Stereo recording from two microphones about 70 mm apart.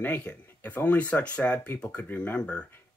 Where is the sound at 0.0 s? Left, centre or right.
Left.